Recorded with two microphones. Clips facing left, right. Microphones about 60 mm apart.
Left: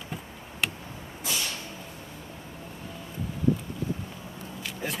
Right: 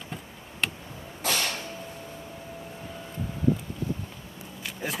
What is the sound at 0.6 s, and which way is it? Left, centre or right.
Vehicle, centre.